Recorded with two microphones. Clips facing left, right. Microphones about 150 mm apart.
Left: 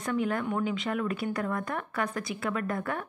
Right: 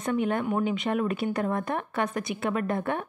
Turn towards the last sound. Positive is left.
turn(degrees=-25)  # may be behind; listen again after turning